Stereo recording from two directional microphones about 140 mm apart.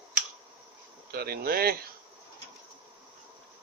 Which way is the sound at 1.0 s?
90° right.